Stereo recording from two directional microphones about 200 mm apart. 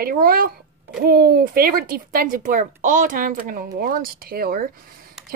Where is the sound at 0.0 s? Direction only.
50° right (ahead or behind).